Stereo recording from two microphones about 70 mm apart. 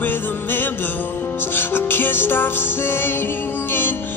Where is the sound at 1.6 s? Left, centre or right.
Left.